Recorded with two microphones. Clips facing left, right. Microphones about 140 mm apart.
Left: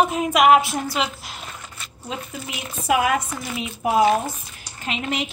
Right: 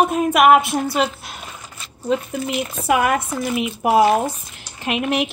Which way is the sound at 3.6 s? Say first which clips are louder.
Right 3 dB; 65° right (ahead or behind).